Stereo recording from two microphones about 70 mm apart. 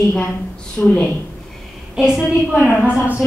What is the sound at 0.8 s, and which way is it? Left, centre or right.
Speech, centre.